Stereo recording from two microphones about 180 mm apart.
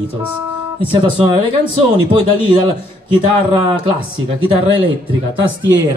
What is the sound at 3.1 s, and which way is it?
Speech, 30° right (ahead or behind).